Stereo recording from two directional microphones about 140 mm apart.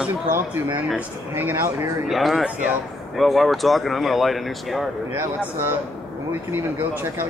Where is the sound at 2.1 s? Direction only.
Centre (ahead or behind).